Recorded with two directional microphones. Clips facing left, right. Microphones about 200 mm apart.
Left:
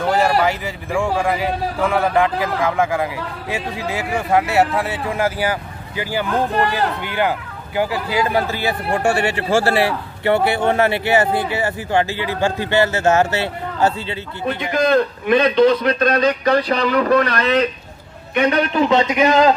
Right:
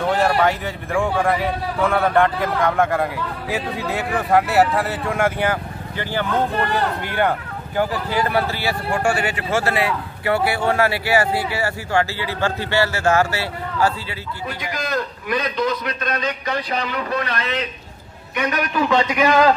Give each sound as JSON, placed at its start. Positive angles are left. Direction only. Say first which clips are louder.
{"t": 0.0, "sound": "speech", "louder": "left 1 dB", "side_deg": 0}
{"t": 18.3, "sound": "speech", "louder": "left 5 dB", "side_deg": 30}